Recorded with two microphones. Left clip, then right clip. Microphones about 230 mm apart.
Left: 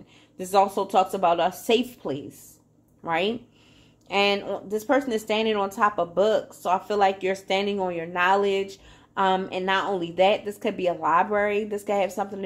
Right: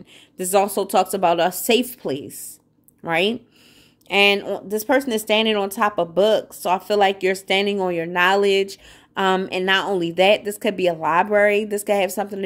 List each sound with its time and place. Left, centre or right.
0.4 s speech: right